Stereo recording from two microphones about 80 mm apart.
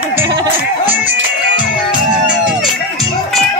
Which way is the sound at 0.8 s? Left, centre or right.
Right.